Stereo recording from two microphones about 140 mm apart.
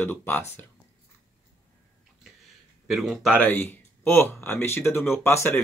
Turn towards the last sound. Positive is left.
turn(degrees=20)  # may be behind; listen again after turning